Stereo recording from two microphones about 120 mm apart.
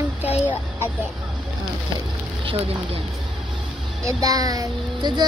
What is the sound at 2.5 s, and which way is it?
Speech, 55° right (ahead or behind).